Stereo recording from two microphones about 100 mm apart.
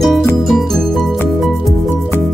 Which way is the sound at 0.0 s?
Centre (ahead or behind).